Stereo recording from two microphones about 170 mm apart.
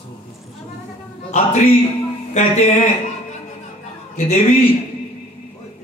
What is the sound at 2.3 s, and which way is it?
Speech, 50° left (ahead or behind).